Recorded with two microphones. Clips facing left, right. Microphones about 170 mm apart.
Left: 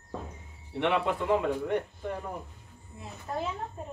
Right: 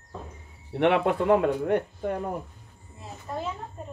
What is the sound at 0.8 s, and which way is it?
Speech, 60° right (ahead or behind).